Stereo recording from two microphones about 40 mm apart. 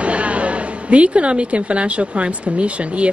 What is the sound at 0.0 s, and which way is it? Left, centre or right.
A woman's voice, right.